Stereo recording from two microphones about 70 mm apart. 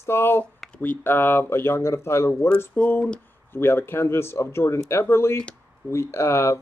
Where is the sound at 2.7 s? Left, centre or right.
Left.